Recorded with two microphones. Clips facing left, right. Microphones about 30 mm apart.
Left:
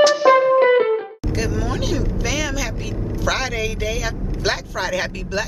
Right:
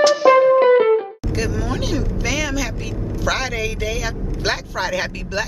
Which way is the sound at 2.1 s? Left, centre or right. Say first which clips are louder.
Right 1 dB; centre.